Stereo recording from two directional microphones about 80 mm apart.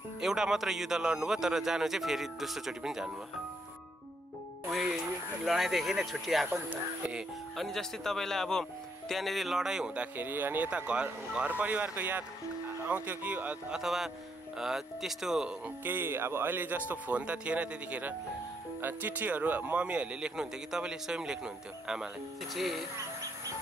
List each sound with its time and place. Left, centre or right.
0.2 s speech: centre
5.4 s speech: centre
6.5 s speech: centre
7.5 s speech: centre
10.1 s speech: right
13.7 s speech: centre
15.8 s speech: right; by 22.8 s centre